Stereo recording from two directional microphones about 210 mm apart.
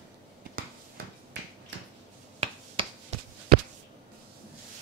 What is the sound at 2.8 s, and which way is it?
Finger snapping, 25° right (ahead or behind).